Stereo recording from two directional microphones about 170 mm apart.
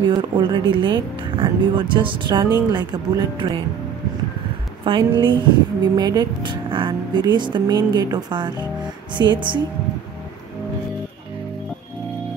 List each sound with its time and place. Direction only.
0.0 s speech: 25° right (ahead or behind)
4.8 s speech: 30° right (ahead or behind)